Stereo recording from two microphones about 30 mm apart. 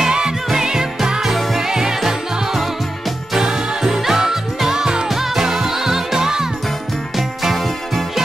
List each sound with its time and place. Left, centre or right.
0.6 s music: centre
1.2 s music: centre
1.7 s music: centre
3.3 s music: centre
4.7 s music: right
5.1 s music: centre
7.2 s music: centre